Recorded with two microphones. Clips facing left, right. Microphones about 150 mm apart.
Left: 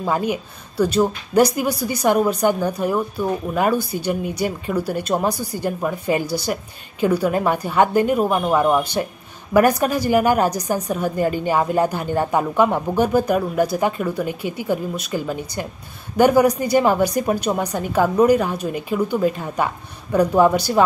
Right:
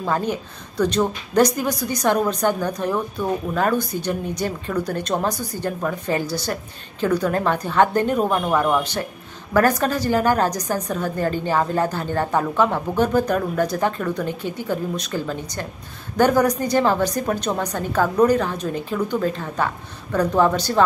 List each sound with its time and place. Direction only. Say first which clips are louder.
0.0 s a woman's voice: left 2 dB; 10° left (ahead or behind)